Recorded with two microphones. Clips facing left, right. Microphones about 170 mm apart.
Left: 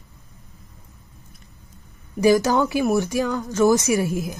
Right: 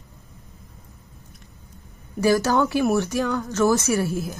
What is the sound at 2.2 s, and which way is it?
Speech, 15° left (ahead or behind).